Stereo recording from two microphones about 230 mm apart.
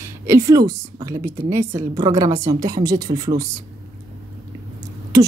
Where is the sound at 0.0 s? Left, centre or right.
Centre.